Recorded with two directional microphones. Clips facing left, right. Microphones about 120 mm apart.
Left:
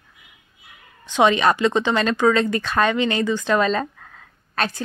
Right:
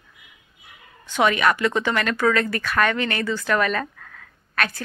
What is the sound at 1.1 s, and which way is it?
A woman's voice, 25° left (ahead or behind).